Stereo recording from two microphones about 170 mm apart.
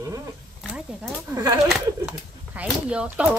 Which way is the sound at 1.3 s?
20° right (ahead or behind).